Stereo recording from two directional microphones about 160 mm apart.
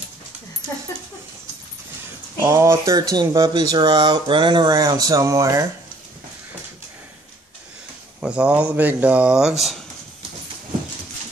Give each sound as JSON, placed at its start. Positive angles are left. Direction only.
{"t": 2.4, "sound": "speech", "side_deg": -20}
{"t": 8.2, "sound": "speech", "side_deg": -5}